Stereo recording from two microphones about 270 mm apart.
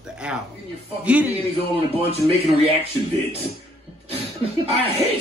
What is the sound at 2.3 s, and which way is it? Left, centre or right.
Speech, right.